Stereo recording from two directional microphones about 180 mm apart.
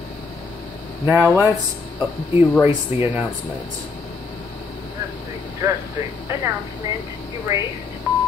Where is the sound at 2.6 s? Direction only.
10° right (ahead or behind).